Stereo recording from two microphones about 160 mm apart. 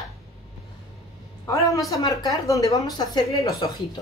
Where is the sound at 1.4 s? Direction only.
20° left (ahead or behind).